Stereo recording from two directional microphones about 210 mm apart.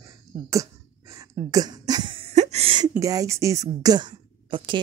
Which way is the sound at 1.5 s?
20° right (ahead or behind).